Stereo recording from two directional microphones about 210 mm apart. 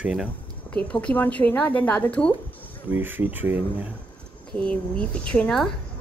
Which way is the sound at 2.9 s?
10° right (ahead or behind).